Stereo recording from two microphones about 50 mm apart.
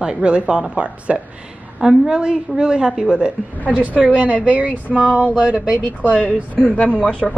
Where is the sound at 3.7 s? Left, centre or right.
Right.